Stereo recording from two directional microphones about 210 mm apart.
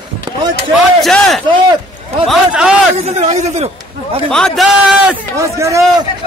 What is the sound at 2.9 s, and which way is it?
Speech, 30° right (ahead or behind).